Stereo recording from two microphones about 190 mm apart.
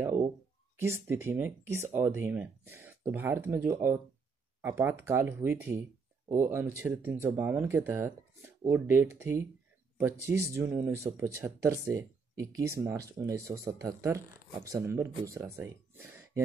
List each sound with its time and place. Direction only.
0.7 s speech: 15° right (ahead or behind)
10.5 s speech: 15° right (ahead or behind)